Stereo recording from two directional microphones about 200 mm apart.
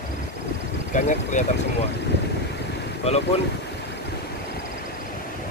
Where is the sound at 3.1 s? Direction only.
30° left (ahead or behind).